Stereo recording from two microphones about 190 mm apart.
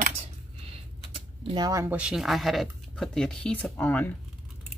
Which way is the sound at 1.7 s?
15° right (ahead or behind).